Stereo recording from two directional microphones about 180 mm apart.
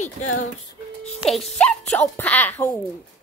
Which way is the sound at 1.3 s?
5° left (ahead or behind).